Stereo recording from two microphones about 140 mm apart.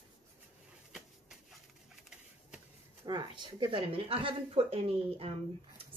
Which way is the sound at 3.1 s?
30° right (ahead or behind).